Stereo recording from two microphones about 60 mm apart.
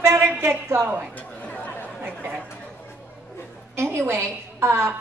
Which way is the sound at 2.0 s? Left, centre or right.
Right.